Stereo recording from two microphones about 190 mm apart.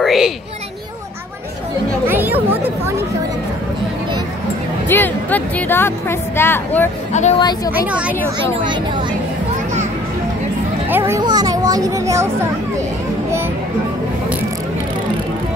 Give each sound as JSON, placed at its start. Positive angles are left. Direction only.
{"t": 0.0, "sound": "a child's voice", "side_deg": 0}
{"t": 2.0, "sound": "speech", "side_deg": -10}
{"t": 4.8, "sound": "speech", "side_deg": 10}
{"t": 7.1, "sound": "speech", "side_deg": 35}
{"t": 7.3, "sound": "a woman's voice", "side_deg": 20}
{"t": 7.7, "sound": "a woman's voice", "side_deg": -5}
{"t": 10.9, "sound": "a child's voice", "side_deg": -10}